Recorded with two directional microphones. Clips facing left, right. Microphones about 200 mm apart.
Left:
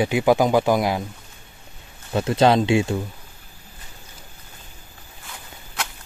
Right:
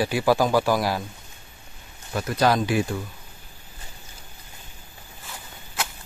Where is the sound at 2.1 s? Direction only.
25° left (ahead or behind).